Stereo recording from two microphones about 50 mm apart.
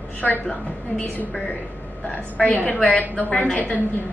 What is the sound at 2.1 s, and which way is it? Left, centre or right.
A woman's voice, left.